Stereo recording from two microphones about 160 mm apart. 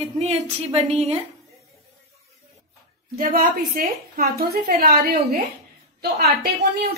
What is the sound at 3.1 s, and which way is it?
A woman's voice, 60° right (ahead or behind).